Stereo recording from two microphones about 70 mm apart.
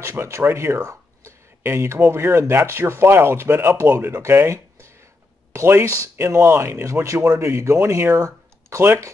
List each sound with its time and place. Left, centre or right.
0.0 s speech: right
0.7 s a sound: right
2.0 s speech: right